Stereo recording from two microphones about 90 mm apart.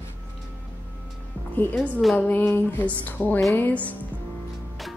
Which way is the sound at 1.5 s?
20° left (ahead or behind).